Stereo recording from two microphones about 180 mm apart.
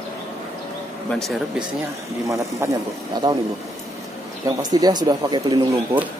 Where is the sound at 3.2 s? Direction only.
25° right (ahead or behind).